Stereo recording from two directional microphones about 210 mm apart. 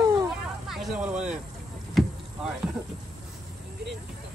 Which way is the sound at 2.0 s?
Centre (ahead or behind).